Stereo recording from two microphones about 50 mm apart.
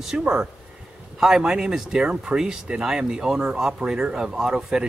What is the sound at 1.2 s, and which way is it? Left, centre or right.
Speech, centre.